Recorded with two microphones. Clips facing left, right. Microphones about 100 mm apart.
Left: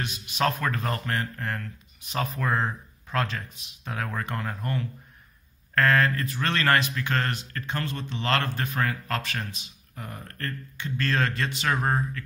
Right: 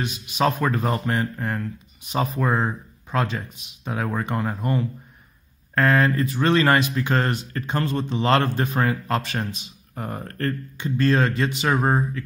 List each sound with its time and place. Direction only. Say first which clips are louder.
0.0 s a man's voice: right 4 dB; 10° right (ahead or behind)
9.9 s speech: right 9 dB; 40° right (ahead or behind)
10.8 s speech: right 6 dB; 15° right (ahead or behind)